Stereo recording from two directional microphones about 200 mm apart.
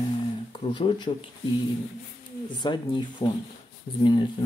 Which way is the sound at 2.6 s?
20° left (ahead or behind).